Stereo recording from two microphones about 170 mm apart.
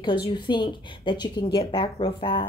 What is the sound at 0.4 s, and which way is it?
Speech, 25° left (ahead or behind).